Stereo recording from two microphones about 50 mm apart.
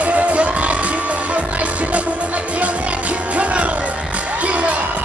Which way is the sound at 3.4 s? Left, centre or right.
Right.